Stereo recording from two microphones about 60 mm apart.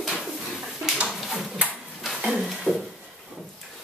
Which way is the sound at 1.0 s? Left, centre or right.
Centre.